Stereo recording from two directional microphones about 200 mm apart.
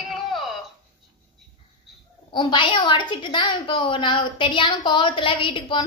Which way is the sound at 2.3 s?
20° left (ahead or behind).